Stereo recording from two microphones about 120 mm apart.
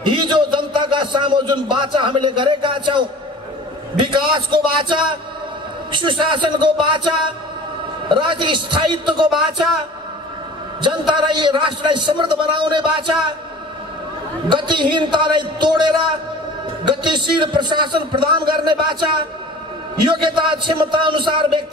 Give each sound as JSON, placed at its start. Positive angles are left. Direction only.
{"t": 0.0, "sound": "a man's voice", "side_deg": -40}
{"t": 9.3, "sound": "speech", "side_deg": 0}
{"t": 10.8, "sound": "a man's voice", "side_deg": -40}
{"t": 14.5, "sound": "a man's voice", "side_deg": -40}